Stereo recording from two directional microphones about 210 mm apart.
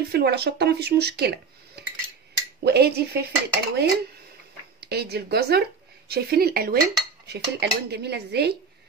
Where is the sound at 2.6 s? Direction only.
50° right (ahead or behind).